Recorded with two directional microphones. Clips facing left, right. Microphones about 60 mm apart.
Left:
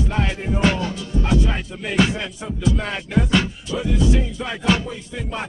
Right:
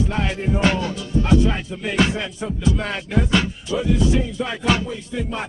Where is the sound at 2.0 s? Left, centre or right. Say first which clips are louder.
Left 1 dB; centre.